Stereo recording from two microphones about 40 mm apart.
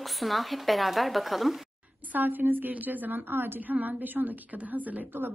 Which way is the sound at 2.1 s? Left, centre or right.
Right.